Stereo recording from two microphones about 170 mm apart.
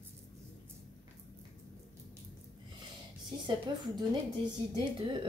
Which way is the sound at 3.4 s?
25° right (ahead or behind).